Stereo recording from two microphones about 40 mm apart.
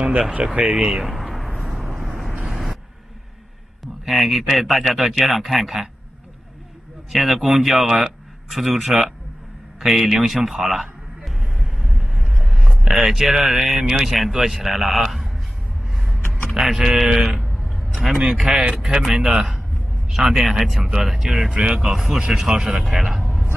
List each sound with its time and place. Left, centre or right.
0.7 s speech: centre
1.0 s a sound: centre
2.4 s vehicle: centre
4.0 s speech: centre
7.1 s speech: centre
9.8 s a sound: centre
12.8 s speech: centre
15.9 s vehicle: centre
16.5 s speech: centre
17.4 s vehicle: centre
18.2 s speech: centre
21.8 s speech: centre